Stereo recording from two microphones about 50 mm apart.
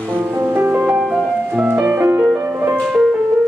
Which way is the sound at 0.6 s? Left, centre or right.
Right.